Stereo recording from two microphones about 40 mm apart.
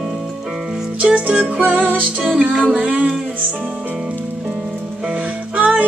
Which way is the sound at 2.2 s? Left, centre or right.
Right.